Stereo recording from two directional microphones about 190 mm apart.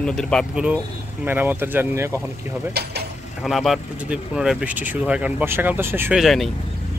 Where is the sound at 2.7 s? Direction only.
60° right (ahead or behind).